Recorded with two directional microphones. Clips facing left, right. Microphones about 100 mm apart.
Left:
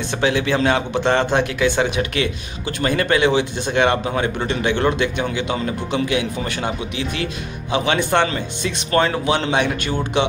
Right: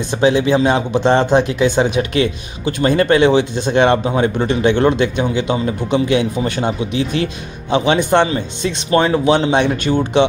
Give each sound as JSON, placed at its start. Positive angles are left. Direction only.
{"t": 0.1, "sound": "speech", "side_deg": -20}